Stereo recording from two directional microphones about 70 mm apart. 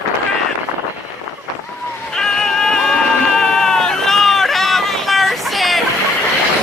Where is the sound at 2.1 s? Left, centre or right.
Centre.